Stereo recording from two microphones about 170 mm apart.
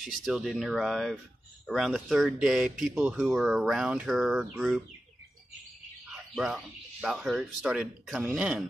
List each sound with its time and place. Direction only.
0.0 s speech: centre (ahead or behind)
6.3 s speech: 5° right (ahead or behind)